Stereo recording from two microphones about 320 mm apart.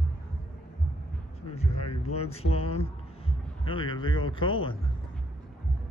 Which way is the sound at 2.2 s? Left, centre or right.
Centre.